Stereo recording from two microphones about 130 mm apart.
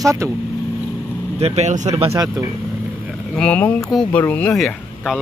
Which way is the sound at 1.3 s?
55° right (ahead or behind).